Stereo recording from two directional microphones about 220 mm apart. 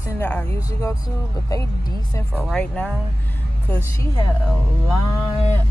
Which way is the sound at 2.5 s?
5° left (ahead or behind).